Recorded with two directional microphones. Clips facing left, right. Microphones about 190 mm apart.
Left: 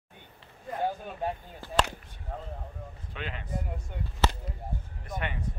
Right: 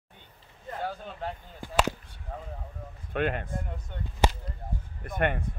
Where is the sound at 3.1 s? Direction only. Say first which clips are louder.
Right 9 dB; 55° right (ahead or behind).